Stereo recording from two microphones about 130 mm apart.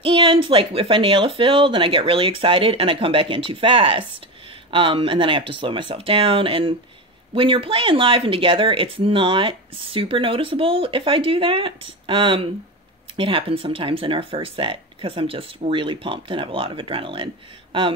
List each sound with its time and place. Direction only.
0.0 s speech: 40° right (ahead or behind)